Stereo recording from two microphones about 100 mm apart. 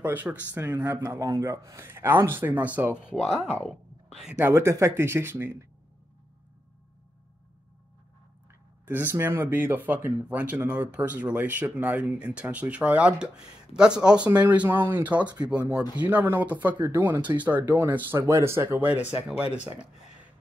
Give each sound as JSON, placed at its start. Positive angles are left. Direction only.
{"t": 0.0, "sound": "speech", "side_deg": -20}
{"t": 3.2, "sound": "speech", "side_deg": 0}
{"t": 3.5, "sound": "a sound", "side_deg": 5}
{"t": 4.3, "sound": "speech", "side_deg": -25}
{"t": 8.8, "sound": "speech", "side_deg": -20}